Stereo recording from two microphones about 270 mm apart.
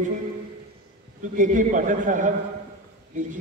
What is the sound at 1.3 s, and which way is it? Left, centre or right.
A man's voice, right.